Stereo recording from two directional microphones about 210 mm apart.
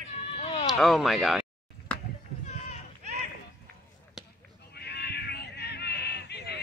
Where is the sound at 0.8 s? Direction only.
Centre (ahead or behind).